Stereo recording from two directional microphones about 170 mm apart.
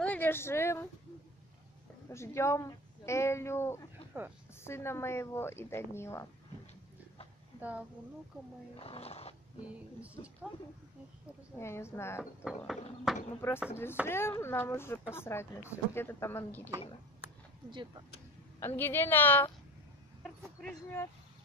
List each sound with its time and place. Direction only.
0.0 s speech: 10° left (ahead or behind)
2.0 s speech: 15° left (ahead or behind)
4.1 s a woman's voice: 10° right (ahead or behind)
4.6 s speech: 15° left (ahead or behind)
8.7 s speech: 35° left (ahead or behind)
11.5 s speech: 15° left (ahead or behind)
12.6 s horse: centre (ahead or behind)
13.7 s speech: 15° left (ahead or behind)
17.6 s speech: 25° right (ahead or behind)
18.6 s speech: 15° left (ahead or behind)
20.6 s speech: 15° left (ahead or behind)